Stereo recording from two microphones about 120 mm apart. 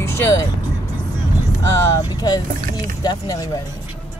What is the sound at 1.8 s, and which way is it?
Speech, 30° left (ahead or behind).